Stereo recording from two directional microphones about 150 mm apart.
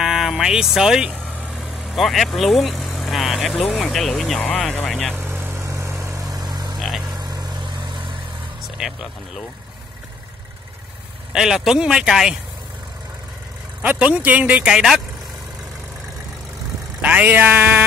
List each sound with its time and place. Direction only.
0.0 s speech: 5° right (ahead or behind)
5.1 s vehicle: 15° right (ahead or behind)
6.8 s a sound: centre (ahead or behind)
7.1 s vehicle: 25° right (ahead or behind)
8.8 s speech: 5° right (ahead or behind)
11.3 s speech: 5° right (ahead or behind)
13.8 s speech: 10° right (ahead or behind)
17.0 s speech: 10° right (ahead or behind)